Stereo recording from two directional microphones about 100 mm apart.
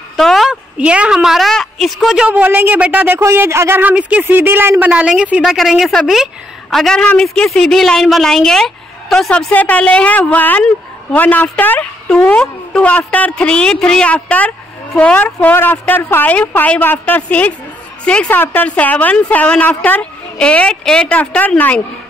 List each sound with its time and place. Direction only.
0.2 s a sound: centre (ahead or behind)
0.7 s a woman's voice: 10° right (ahead or behind)
5.4 s a woman's voice: centre (ahead or behind)